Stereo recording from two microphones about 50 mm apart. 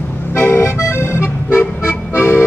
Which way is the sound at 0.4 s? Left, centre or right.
Left.